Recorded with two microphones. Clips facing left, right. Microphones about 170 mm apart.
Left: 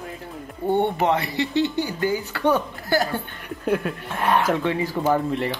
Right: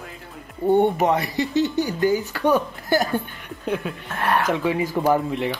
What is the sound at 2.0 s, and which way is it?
Speech, 15° right (ahead or behind).